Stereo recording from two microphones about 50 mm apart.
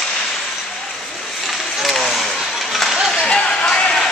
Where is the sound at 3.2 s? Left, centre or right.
Centre.